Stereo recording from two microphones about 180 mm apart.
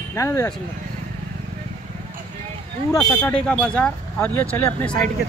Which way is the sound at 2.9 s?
5° left (ahead or behind).